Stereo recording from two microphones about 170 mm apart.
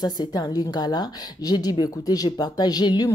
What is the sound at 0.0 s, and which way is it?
A woman's voice, 25° left (ahead or behind).